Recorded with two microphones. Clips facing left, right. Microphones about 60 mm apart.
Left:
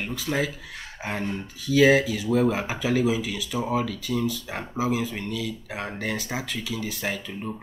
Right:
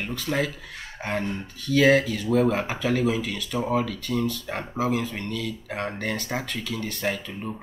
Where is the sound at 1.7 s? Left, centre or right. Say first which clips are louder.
Left 1 dB; centre.